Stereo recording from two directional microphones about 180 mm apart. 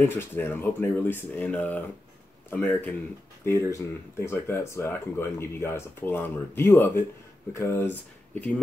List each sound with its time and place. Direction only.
0.1 s speech: 10° left (ahead or behind)